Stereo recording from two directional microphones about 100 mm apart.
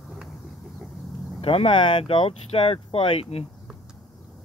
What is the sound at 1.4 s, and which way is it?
Speech, 70° left (ahead or behind).